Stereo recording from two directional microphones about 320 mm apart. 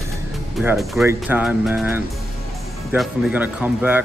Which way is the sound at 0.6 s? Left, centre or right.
Centre.